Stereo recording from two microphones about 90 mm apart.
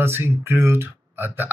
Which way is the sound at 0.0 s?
25° right (ahead or behind).